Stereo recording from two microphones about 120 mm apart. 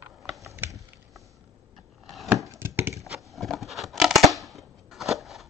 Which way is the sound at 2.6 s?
20° right (ahead or behind).